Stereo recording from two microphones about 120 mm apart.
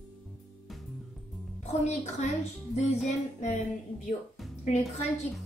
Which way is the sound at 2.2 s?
75° left (ahead or behind).